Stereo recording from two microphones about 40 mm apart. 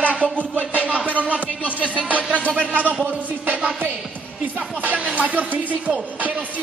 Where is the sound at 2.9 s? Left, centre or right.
Right.